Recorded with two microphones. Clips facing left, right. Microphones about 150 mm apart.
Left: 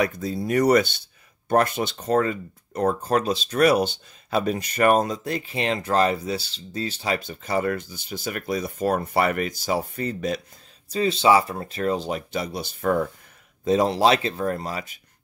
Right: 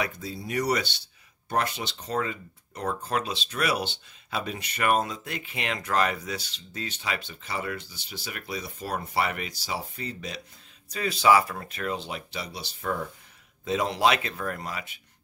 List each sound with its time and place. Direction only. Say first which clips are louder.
0.0 s speech: left 8 dB; 45° left (ahead or behind)
10.9 s speech: left 3 dB; 25° left (ahead or behind); by 13.1 s 55° left (ahead or behind)
13.7 s speech: left 5 dB; 35° left (ahead or behind)